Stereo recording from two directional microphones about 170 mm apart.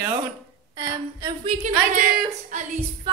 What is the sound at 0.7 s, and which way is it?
Speech, 25° right (ahead or behind).